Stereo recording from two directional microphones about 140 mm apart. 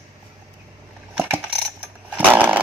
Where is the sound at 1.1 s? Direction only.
15° right (ahead or behind).